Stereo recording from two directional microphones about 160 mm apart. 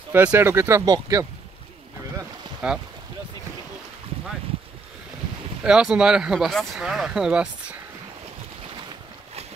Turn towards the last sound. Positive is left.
turn(degrees=-5)  # may be behind; listen again after turning